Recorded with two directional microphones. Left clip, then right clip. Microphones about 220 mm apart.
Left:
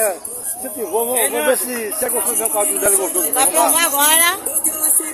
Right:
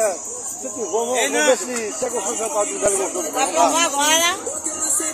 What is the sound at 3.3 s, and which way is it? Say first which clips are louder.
Speech: left 1 dB; 30° left (ahead or behind).